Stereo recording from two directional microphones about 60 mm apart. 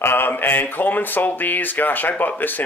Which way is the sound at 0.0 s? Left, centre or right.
Left.